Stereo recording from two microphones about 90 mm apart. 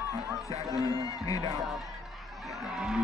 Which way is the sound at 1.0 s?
40° left (ahead or behind).